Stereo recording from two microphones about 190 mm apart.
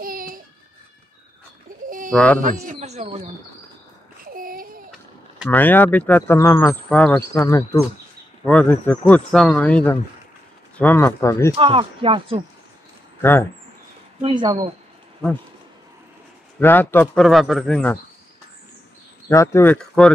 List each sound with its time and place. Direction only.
0.0 s a sound: 50° right (ahead or behind)
1.9 s sheep: 45° right (ahead or behind)
2.1 s speech: 10° left (ahead or behind)
2.4 s a man's voice: 40° right (ahead or behind)
4.2 s a sound: 50° right (ahead or behind)
5.5 s speech: 10° left (ahead or behind)
11.5 s speech: 30° right (ahead or behind)
13.2 s speech: 10° left (ahead or behind)
14.2 s speech: 25° right (ahead or behind)
16.5 s speech: 10° left (ahead or behind)
19.2 s speech: 15° left (ahead or behind)